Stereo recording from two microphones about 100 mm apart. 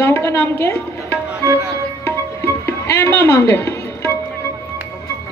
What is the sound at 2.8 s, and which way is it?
Speech, 25° left (ahead or behind).